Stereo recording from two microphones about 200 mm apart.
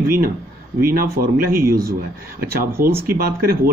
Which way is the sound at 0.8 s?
45° right (ahead or behind).